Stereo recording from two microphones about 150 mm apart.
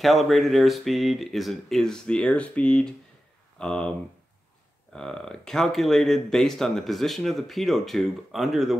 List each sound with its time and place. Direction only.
0.0 s speech: centre (ahead or behind)
4.9 s speech: 5° left (ahead or behind)